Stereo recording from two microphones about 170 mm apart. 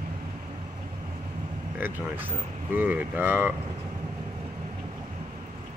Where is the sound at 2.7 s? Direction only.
10° right (ahead or behind).